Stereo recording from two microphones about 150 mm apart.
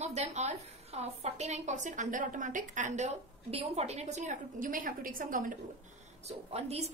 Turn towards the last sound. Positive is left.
turn(degrees=-45)  # may be behind; listen again after turning